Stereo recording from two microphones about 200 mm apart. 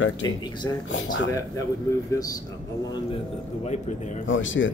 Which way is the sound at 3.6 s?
35° left (ahead or behind).